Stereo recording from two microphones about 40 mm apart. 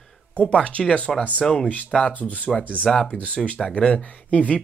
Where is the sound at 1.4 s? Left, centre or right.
Centre.